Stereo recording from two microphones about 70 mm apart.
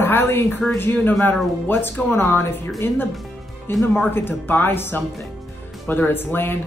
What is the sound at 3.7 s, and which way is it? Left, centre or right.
Speech, left.